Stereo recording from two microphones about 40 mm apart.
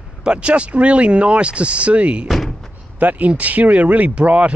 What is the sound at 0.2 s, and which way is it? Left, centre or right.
Speech, right.